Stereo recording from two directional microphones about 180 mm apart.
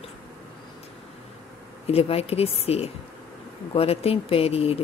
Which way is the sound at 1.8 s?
35° left (ahead or behind).